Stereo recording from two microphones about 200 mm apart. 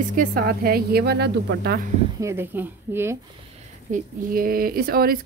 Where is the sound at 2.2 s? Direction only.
10° right (ahead or behind).